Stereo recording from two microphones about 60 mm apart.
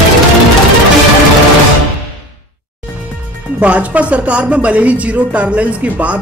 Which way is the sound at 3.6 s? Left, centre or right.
Right.